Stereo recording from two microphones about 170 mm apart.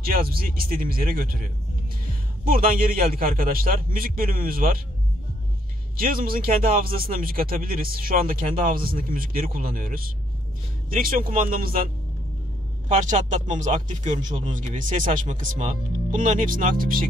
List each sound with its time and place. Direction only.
0.0 s speech: 60° right (ahead or behind)
5.9 s speech: 55° right (ahead or behind)